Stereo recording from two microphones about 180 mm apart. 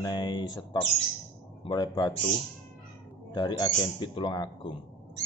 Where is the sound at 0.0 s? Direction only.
25° left (ahead or behind).